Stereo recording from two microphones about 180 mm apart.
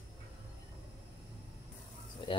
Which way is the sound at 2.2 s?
30° left (ahead or behind).